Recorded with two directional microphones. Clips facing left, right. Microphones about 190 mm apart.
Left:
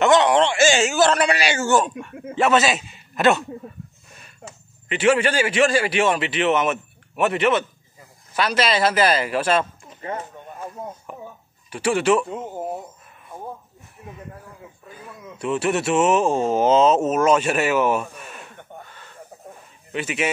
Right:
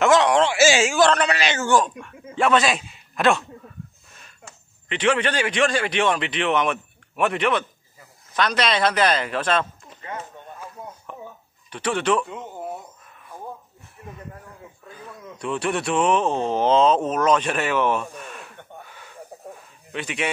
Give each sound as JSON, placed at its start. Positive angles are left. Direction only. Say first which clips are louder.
{"t": 0.0, "sound": "a man's voice", "louder": "left 1 dB", "side_deg": 0}
{"t": 11.1, "sound": "a sound", "louder": "left 1 dB", "side_deg": 10}
{"t": 11.7, "sound": "speech", "louder": "left 3 dB", "side_deg": 5}
{"t": 12.3, "sound": "speech", "louder": "left 4 dB", "side_deg": 40}
{"t": 15.0, "sound": "speech", "louder": "left 2 dB", "side_deg": 5}
{"t": 18.9, "sound": "a sound", "louder": "right 1 dB", "side_deg": -10}
{"t": 19.9, "sound": "a man's voice", "louder": "left 3 dB", "side_deg": 5}